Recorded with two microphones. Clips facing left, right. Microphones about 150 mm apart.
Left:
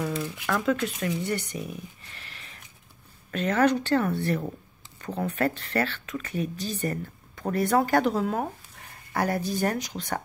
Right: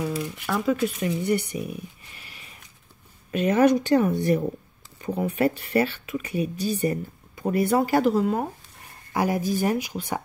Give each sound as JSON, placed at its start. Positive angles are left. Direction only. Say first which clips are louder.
{"t": 0.0, "sound": "a sound", "louder": "right 2 dB", "side_deg": -10}
{"t": 0.4, "sound": "speech", "louder": "right 2 dB", "side_deg": -5}
{"t": 9.1, "sound": "speech", "louder": "right 3 dB", "side_deg": -10}